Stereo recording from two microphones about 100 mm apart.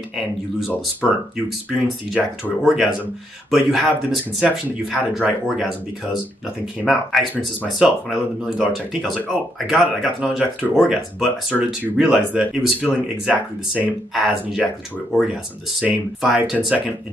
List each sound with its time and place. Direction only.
1.3 s speech: 5° right (ahead or behind)
6.9 s speech: centre (ahead or behind)
11.5 s speech: 15° right (ahead or behind)
15.8 s speech: 10° right (ahead or behind)